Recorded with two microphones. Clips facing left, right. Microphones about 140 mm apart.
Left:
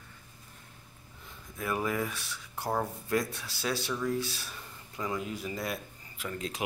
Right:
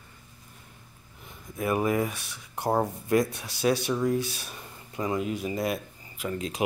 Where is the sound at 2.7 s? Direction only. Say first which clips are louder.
Right 6 dB; 30° right (ahead or behind).